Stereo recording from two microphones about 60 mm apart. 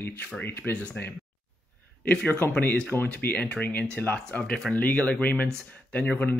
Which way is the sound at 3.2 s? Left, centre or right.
Left.